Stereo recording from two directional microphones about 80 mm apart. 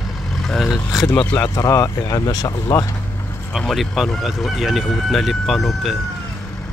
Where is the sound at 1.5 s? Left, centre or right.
Left.